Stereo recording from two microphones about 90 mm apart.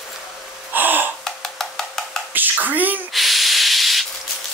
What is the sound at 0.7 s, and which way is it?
Gasp, 20° right (ahead or behind).